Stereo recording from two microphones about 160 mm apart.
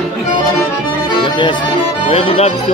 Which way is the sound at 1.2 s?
30° left (ahead or behind).